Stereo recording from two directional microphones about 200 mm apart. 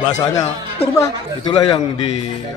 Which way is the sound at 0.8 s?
30° left (ahead or behind).